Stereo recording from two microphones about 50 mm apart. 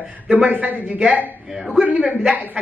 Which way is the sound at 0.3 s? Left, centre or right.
Right.